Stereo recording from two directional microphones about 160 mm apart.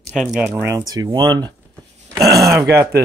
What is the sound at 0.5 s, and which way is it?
Speech, 20° right (ahead or behind).